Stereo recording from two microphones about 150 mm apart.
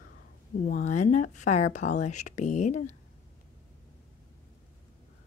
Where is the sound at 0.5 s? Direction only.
60° left (ahead or behind).